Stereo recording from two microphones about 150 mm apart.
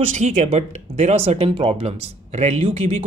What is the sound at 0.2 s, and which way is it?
Speech, 45° right (ahead or behind).